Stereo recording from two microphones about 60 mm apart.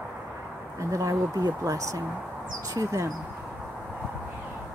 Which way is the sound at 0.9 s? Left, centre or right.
Right.